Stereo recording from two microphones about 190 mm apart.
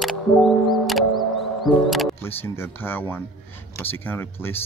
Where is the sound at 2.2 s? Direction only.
10° left (ahead or behind).